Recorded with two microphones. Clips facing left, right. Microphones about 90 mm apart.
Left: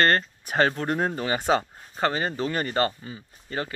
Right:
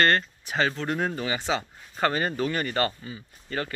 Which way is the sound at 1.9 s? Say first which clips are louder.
Even; 20° left (ahead or behind).